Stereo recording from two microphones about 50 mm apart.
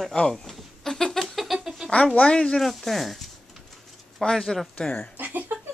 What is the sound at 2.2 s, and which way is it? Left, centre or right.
Speech, centre.